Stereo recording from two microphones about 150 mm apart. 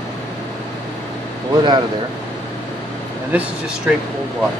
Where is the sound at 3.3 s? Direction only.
10° right (ahead or behind).